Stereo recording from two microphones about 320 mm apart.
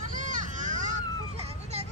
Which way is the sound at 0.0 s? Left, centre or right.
Right.